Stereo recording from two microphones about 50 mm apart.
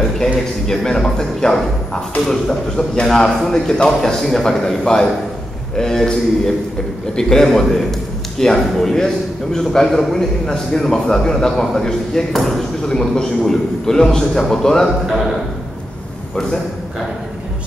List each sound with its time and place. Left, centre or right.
0.7 s a man's voice: centre
12.8 s a man's voice: centre